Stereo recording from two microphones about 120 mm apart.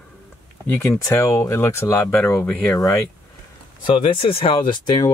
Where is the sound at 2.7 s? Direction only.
30° left (ahead or behind).